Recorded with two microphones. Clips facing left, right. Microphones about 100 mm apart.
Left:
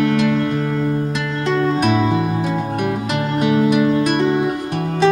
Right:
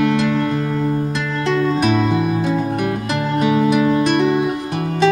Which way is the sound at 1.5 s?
Centre (ahead or behind).